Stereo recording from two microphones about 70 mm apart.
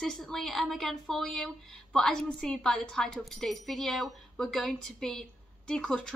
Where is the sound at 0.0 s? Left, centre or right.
Centre.